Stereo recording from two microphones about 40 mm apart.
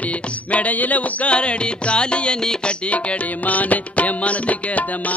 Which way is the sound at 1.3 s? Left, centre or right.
Left.